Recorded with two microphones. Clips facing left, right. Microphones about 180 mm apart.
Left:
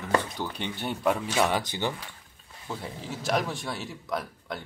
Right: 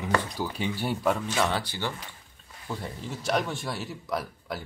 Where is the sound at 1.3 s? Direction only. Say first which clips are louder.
Left 2 dB; 15° left (ahead or behind).